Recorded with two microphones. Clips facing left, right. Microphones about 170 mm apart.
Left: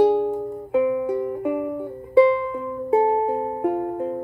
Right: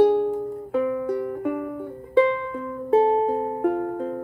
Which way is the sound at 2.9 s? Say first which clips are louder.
Right 1 dB; 10° left (ahead or behind).